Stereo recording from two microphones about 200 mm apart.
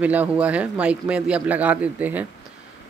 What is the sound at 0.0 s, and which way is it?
A man's voice, 5° right (ahead or behind).